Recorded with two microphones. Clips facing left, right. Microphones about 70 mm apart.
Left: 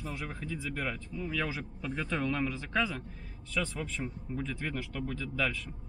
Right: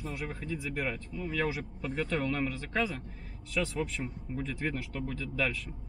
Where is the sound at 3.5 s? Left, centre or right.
Centre.